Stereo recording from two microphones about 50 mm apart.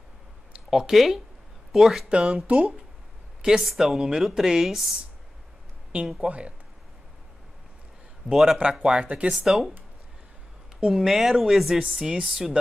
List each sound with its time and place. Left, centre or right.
0.7 s speech: centre
2.0 s speech: right
3.4 s speech: centre
6.2 s speech: right
8.3 s speech: centre
9.0 s speech: right
9.4 s speech: centre
10.9 s speech: centre
11.8 s speech: centre